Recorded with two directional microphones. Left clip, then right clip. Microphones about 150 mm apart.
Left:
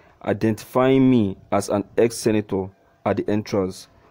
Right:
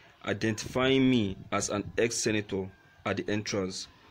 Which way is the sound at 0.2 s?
50° left (ahead or behind).